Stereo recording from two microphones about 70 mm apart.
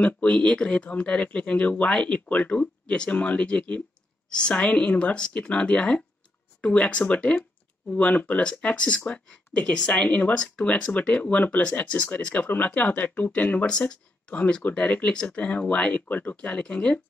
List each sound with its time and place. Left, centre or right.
0.0 s speech: centre
10.0 s speech: left